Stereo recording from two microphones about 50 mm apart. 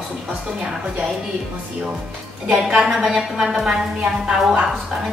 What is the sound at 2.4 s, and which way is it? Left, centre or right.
Speech, centre.